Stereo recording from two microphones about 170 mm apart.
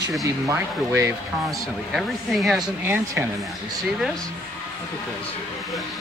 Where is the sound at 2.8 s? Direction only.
15° right (ahead or behind).